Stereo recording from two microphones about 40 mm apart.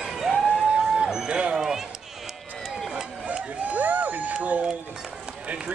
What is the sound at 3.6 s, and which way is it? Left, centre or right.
Crowd, right.